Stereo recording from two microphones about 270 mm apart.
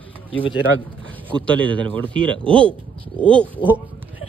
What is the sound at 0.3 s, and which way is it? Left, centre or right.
Speech, centre.